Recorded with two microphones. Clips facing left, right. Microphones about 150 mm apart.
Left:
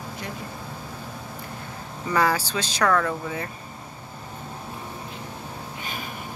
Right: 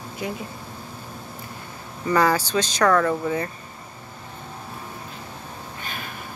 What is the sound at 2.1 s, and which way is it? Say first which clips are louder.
Speech: right 3 dB; 5° left (ahead or behind).